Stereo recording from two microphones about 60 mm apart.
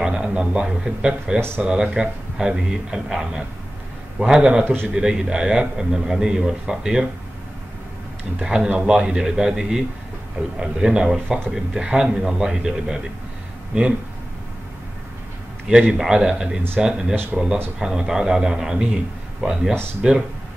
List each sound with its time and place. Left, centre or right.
0.0 s a man's voice: centre
4.6 s a man's voice: right
4.9 s a man's voice: centre
8.4 s a man's voice: centre
15.9 s a man's voice: centre
17.1 s a man's voice: right
17.7 s a man's voice: centre